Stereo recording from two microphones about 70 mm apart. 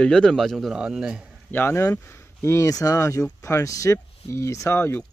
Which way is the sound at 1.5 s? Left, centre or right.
Left.